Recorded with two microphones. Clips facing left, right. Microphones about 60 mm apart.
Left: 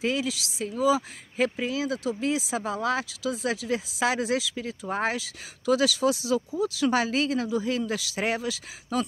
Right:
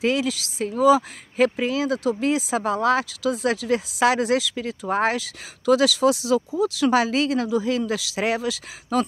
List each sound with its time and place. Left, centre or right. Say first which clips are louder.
0.0 s speech: right 5 dB; right
0.3 s speech: right 5 dB; right